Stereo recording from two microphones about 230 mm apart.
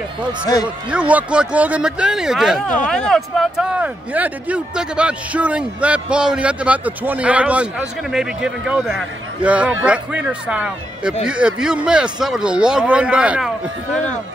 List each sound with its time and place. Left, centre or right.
0.8 s speech: centre